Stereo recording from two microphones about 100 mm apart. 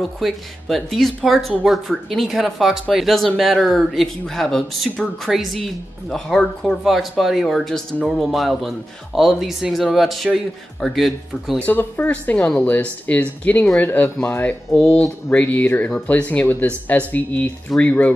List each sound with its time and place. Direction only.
0.2 s speech: centre (ahead or behind)
11.5 s speech: 15° left (ahead or behind)